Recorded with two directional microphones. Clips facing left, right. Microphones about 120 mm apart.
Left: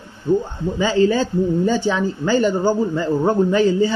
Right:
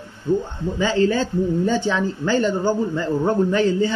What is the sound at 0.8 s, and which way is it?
Speech, 15° left (ahead or behind).